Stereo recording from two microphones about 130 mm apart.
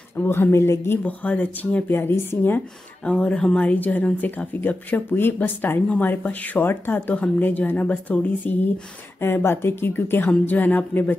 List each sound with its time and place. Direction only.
0.1 s speech: 15° left (ahead or behind)